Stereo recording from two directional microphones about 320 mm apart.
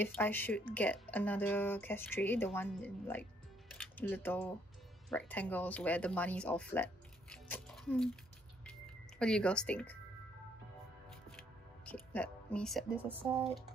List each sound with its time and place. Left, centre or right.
0.0 s speech: centre
8.6 s music: centre
11.8 s speech: centre